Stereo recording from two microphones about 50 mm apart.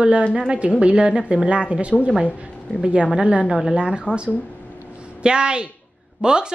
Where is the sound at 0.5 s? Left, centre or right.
Right.